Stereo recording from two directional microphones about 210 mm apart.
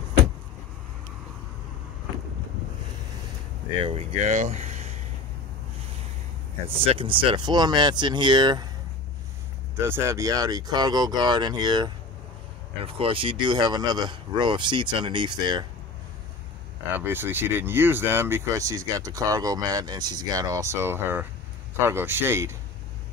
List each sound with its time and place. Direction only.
3.8 s speech: 30° right (ahead or behind)
6.7 s speech: 25° right (ahead or behind)
9.8 s speech: 10° right (ahead or behind)
16.9 s speech: 10° right (ahead or behind)